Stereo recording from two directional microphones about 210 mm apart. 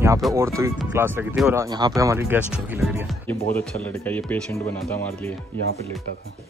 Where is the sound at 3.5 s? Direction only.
10° left (ahead or behind).